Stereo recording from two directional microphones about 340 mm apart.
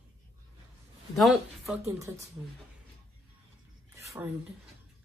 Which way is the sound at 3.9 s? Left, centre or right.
Centre.